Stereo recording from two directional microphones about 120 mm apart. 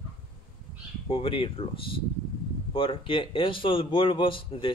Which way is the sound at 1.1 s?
50° left (ahead or behind).